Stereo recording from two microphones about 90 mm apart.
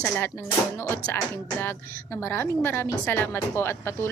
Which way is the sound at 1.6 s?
25° left (ahead or behind).